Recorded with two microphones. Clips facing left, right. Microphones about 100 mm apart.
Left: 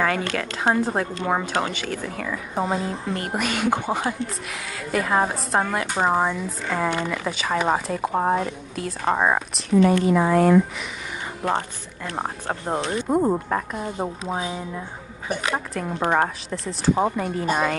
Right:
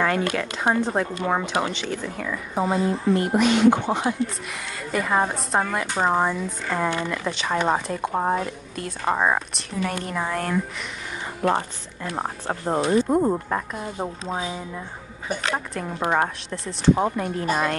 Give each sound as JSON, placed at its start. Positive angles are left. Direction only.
{"t": 0.0, "sound": "speech", "side_deg": -5}
{"t": 0.7, "sound": "a woman's voice", "side_deg": 5}
{"t": 15.2, "sound": "a woman's voice", "side_deg": 5}